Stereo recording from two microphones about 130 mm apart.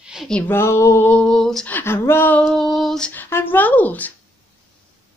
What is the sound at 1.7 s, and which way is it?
Speech, 20° left (ahead or behind).